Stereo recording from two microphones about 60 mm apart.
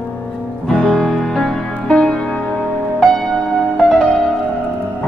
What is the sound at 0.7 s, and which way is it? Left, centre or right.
Music, centre.